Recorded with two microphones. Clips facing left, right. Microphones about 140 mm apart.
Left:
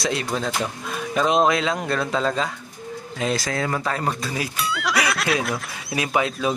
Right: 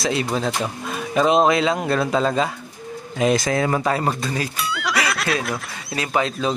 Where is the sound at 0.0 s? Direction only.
Centre (ahead or behind); by 3.9 s 20° right (ahead or behind).